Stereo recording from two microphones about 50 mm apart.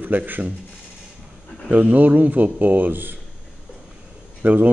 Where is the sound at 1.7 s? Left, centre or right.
Right.